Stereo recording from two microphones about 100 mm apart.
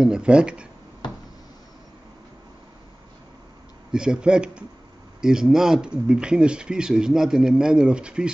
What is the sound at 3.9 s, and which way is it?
Speech, 10° right (ahead or behind).